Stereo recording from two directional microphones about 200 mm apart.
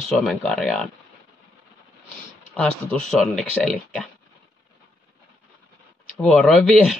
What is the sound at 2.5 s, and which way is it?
Speech, 5° left (ahead or behind).